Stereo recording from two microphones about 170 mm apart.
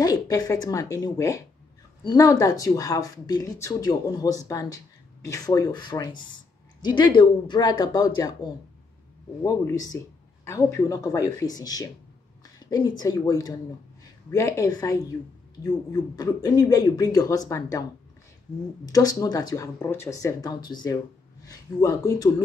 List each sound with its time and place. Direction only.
0.0 s speech: 20° left (ahead or behind)
18.9 s speech: 20° left (ahead or behind)